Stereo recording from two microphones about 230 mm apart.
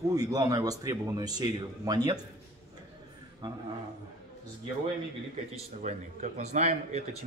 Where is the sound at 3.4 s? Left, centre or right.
Centre.